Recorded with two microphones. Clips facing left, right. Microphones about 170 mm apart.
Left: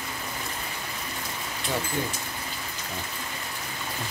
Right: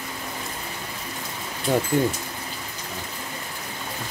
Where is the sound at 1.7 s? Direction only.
50° right (ahead or behind).